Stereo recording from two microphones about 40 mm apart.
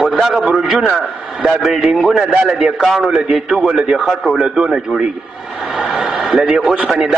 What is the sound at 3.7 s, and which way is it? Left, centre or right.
Speech, right.